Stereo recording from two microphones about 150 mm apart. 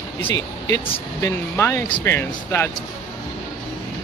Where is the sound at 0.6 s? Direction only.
25° left (ahead or behind).